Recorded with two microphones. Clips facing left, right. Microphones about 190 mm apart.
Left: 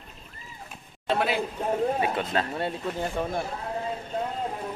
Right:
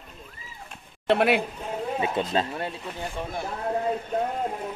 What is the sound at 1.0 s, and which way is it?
Speech, 65° right (ahead or behind).